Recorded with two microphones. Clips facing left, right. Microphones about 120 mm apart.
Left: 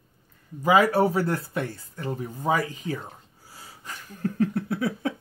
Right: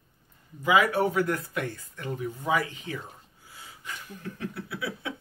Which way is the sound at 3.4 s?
40° left (ahead or behind).